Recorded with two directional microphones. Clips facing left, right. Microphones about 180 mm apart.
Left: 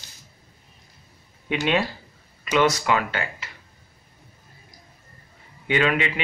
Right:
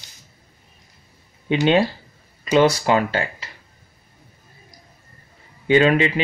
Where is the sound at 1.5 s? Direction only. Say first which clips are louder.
Right 6 dB; 30° right (ahead or behind).